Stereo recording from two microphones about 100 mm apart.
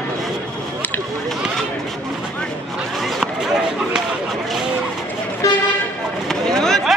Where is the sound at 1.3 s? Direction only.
5° left (ahead or behind).